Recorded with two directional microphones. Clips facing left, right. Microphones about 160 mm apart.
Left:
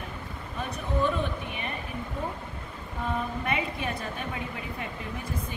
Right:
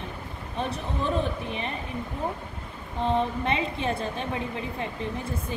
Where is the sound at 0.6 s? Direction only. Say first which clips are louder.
Left 1 dB; 30° right (ahead or behind).